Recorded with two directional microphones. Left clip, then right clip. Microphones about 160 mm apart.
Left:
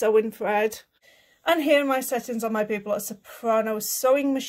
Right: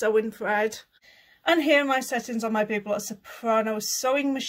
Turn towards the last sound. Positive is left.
turn(degrees=25)  # may be behind; listen again after turning